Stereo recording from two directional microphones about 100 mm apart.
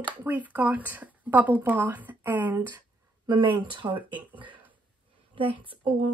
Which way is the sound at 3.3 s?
50° right (ahead or behind).